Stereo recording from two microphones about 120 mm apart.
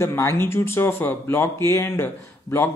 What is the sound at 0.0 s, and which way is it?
Speech, 25° left (ahead or behind).